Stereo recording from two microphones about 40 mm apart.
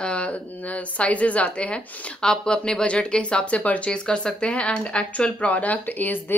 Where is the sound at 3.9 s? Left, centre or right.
Left.